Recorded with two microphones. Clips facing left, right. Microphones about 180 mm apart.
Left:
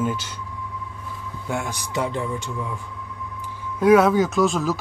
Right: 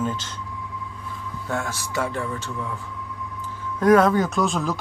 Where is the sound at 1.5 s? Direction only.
15° left (ahead or behind).